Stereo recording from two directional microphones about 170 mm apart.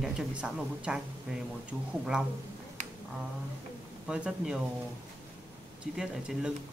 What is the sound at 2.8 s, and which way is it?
Finger snapping, 45° right (ahead or behind).